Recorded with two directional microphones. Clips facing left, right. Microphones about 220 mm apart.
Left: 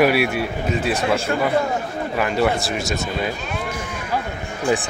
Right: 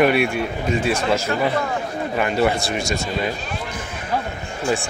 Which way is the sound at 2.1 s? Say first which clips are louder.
Even; centre (ahead or behind).